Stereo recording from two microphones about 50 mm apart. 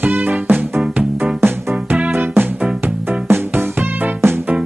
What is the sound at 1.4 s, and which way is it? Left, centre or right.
Music, right.